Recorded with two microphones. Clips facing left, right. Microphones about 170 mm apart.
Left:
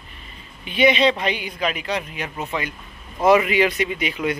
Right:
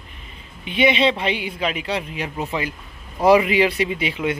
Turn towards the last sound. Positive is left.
turn(degrees=-25)  # may be behind; listen again after turning